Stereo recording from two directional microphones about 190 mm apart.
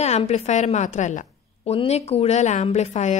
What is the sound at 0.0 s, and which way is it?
A woman's voice, 35° left (ahead or behind).